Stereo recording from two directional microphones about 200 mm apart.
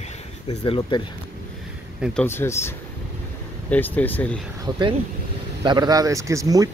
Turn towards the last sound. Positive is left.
turn(degrees=-15)  # may be behind; listen again after turning